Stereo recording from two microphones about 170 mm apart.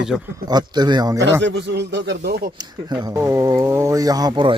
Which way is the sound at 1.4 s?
90° right.